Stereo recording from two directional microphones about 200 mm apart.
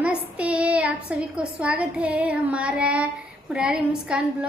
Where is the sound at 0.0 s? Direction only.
5° right (ahead or behind).